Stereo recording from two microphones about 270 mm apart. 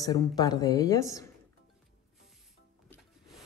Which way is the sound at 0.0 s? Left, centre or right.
Centre.